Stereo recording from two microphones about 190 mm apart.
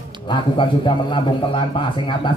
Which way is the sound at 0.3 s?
25° left (ahead or behind).